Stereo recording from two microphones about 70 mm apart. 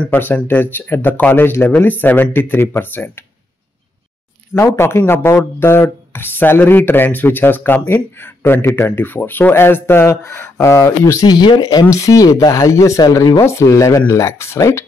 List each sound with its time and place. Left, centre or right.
0.0 s speech: left
4.7 s speech: left
11.2 s speech: left
11.9 s speech: left